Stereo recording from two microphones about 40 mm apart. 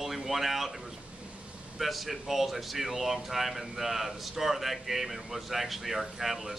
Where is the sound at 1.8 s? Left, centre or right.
Centre.